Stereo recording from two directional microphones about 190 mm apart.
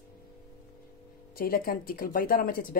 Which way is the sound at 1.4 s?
50° left (ahead or behind).